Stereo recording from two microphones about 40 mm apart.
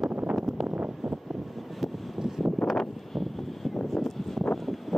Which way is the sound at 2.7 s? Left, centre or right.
Centre.